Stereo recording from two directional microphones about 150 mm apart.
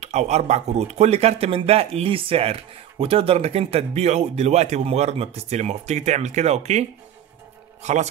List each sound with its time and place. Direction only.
0.0 s speech: 50° right (ahead or behind)